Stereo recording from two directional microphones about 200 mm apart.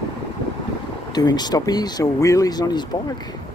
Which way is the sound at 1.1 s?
20° left (ahead or behind).